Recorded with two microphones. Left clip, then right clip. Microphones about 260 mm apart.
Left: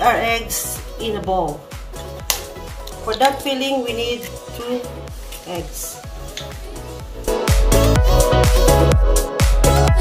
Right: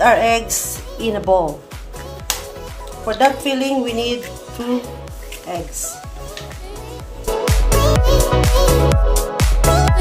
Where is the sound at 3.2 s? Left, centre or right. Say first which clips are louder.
Right 2 dB; right.